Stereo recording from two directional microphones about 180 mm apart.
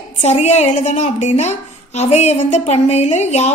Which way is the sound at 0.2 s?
40° left (ahead or behind).